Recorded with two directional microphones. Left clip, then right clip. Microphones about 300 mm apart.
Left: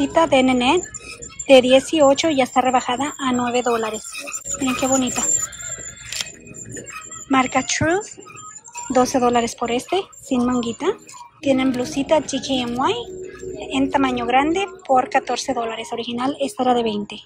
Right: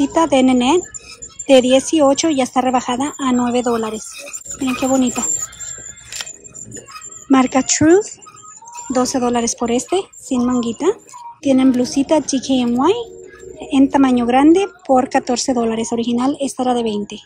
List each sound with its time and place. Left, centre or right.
0.0 s a woman's voice: centre
7.2 s a woman's voice: centre